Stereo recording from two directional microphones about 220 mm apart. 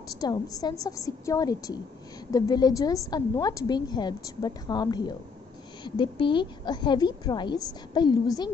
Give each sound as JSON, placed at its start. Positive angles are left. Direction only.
{"t": 0.2, "sound": "a woman's voice", "side_deg": 15}